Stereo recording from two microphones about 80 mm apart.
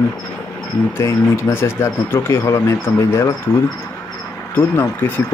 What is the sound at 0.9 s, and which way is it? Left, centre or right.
Speech, left.